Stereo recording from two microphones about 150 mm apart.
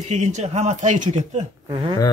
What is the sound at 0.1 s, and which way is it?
Speech, 50° right (ahead or behind).